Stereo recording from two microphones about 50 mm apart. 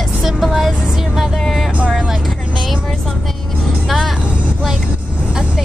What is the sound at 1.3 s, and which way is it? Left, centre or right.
Vehicle, centre.